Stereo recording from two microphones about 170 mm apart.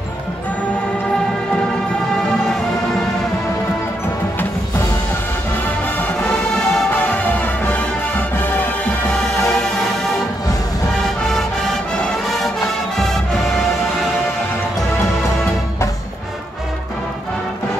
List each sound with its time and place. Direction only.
2.1 s music: 5° left (ahead or behind)
5.9 s music: 5° left (ahead or behind)
9.6 s music: 5° left (ahead or behind)
12.9 s music: centre (ahead or behind)